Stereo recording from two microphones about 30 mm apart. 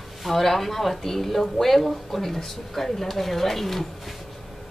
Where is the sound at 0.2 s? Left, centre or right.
Centre.